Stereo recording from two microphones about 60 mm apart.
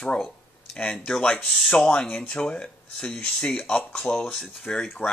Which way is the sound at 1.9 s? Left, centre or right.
Centre.